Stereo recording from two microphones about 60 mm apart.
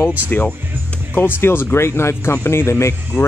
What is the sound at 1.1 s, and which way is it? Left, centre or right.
Speech, left.